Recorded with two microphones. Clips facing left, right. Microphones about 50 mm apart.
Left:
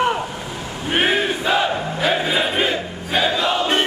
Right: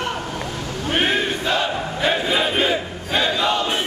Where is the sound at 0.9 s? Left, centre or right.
Centre.